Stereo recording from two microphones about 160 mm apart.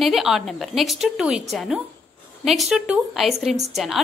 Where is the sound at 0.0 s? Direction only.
Centre (ahead or behind).